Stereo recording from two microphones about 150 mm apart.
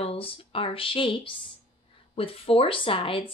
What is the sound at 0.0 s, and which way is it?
A woman's voice, 40° left (ahead or behind).